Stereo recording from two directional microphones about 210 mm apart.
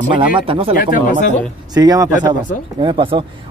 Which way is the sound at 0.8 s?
40° left (ahead or behind).